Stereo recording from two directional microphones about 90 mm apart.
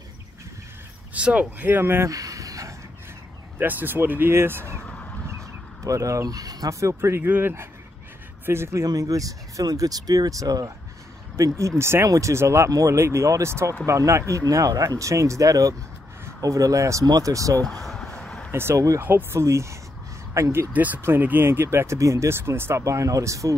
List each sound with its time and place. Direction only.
1.1 s speech: 15° right (ahead or behind)
2.0 s a sound: 40° right (ahead or behind)
3.5 s speech: 20° right (ahead or behind)
5.9 s speech: 35° right (ahead or behind)
8.8 s speech: 40° right (ahead or behind)
17.8 s a sound: 5° left (ahead or behind)
18.5 s speech: 30° right (ahead or behind)
20.7 s speech: 20° right (ahead or behind); by 23.5 s 35° right (ahead or behind)